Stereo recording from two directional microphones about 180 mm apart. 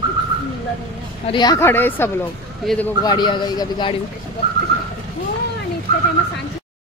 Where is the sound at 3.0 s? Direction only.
25° left (ahead or behind).